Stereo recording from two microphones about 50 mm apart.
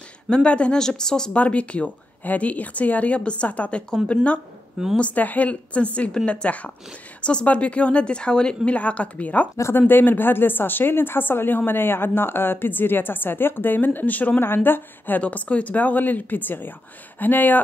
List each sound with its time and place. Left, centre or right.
0.3 s speech: left
1.3 s speech: left
9.8 s a woman's voice: left
14.4 s a woman's voice: left